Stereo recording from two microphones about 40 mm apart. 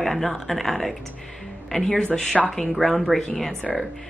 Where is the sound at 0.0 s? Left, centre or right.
Centre.